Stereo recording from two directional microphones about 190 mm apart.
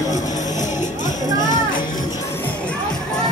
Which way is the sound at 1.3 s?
20° left (ahead or behind).